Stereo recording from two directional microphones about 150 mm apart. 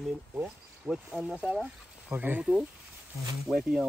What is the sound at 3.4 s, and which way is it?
Speech, centre (ahead or behind).